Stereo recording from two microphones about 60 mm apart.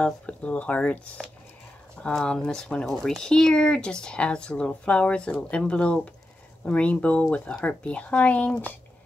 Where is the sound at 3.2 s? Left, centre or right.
Centre.